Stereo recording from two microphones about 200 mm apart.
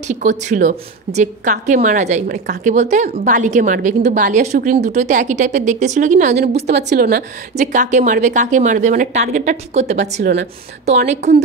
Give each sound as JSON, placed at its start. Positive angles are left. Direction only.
{"t": 0.1, "sound": "a woman's voice", "side_deg": -35}
{"t": 10.2, "sound": "a woman's voice", "side_deg": -50}
{"t": 11.1, "sound": "a woman's voice", "side_deg": -35}